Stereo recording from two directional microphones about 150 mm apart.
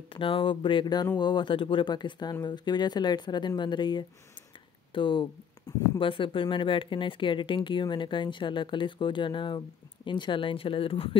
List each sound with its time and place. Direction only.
0.1 s speech: 35° left (ahead or behind)